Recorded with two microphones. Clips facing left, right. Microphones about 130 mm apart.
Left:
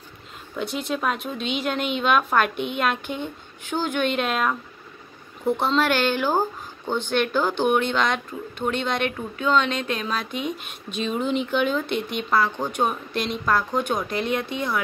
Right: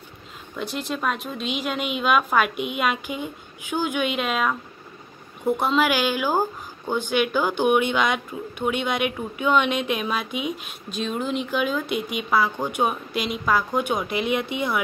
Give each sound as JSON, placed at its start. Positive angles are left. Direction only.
{"t": 0.6, "sound": "a woman's voice", "side_deg": 0}